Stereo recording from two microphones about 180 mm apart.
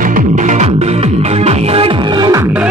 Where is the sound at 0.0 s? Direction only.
45° right (ahead or behind).